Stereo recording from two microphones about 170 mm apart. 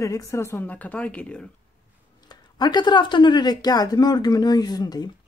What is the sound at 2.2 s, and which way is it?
Speech, 25° left (ahead or behind).